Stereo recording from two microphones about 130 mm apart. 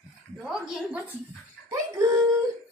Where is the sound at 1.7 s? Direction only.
25° right (ahead or behind).